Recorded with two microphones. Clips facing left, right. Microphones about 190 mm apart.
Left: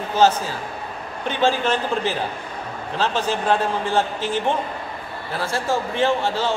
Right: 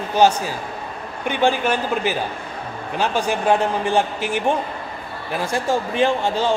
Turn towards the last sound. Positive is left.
turn(degrees=-15)  # may be behind; listen again after turning